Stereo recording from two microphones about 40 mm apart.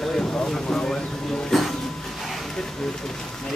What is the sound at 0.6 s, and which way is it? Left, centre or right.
Speech, centre.